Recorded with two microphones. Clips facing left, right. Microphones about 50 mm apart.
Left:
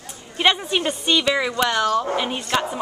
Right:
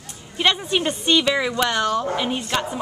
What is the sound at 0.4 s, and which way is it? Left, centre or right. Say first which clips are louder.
A woman's voice: left 1 dB; centre.